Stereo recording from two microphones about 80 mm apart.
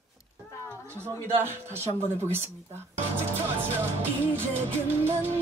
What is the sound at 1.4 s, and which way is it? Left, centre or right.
Music, right.